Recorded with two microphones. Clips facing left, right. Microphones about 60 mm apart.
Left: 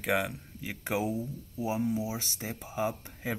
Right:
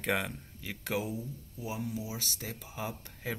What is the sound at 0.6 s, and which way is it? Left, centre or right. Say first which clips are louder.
Speech: left 3 dB; centre.